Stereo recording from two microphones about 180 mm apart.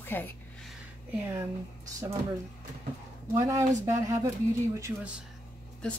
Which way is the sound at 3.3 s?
15° right (ahead or behind).